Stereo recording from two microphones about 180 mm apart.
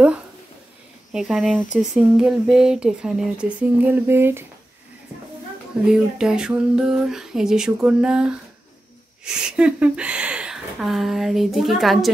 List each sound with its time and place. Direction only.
1.1 s speech: centre (ahead or behind)
5.9 s speech: 5° right (ahead or behind)